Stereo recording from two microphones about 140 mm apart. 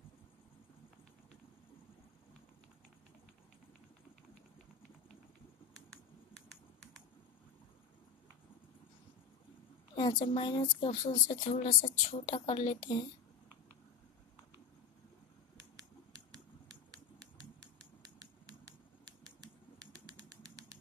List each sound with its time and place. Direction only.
10.2 s a woman's voice: 35° left (ahead or behind)
10.9 s speech: 55° left (ahead or behind)
11.3 s a woman's voice: 35° left (ahead or behind)
11.6 s a woman's voice: 50° left (ahead or behind); by 13.1 s 35° left (ahead or behind)
16.9 s a sound: 25° right (ahead or behind)